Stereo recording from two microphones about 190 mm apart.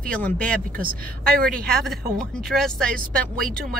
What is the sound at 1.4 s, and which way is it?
Speech, 5° left (ahead or behind).